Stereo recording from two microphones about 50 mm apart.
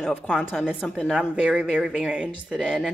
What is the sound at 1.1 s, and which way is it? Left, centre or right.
Speech, right.